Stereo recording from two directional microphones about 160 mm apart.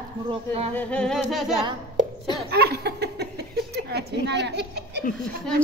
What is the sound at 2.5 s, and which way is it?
Speech, 90° right.